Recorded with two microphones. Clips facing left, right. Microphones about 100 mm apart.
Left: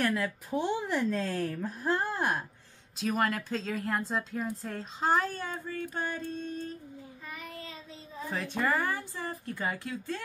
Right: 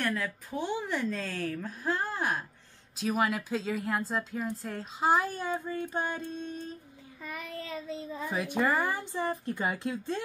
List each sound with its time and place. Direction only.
0.0 s a woman's voice: 10° left (ahead or behind); by 6.8 s 20° right (ahead or behind)
8.3 s speech: 15° right (ahead or behind)